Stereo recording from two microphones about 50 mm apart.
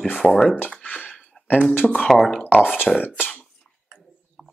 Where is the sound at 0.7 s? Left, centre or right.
Left.